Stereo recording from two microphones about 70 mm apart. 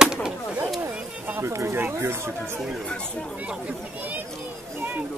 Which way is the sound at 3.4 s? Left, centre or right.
Centre.